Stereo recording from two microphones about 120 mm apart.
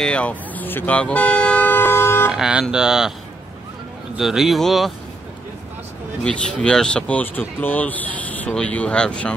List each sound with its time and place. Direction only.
0.0 s toot: 10° left (ahead or behind)
2.3 s speech: 5° right (ahead or behind)
4.2 s speech: 5° right (ahead or behind)
6.2 s speech: 10° left (ahead or behind)